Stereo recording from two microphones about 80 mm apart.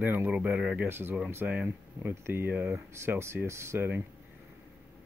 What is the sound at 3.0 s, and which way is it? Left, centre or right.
Speech, right.